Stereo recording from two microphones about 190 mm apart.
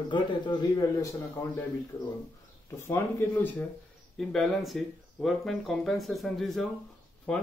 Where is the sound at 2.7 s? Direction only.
10° left (ahead or behind).